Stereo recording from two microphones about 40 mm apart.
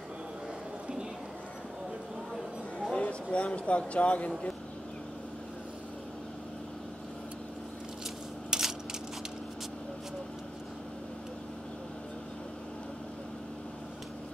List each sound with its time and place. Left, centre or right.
3.0 s speech: left
8.5 s coin: centre